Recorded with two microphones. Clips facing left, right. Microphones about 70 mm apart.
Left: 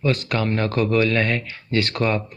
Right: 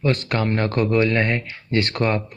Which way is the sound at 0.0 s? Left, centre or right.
Right.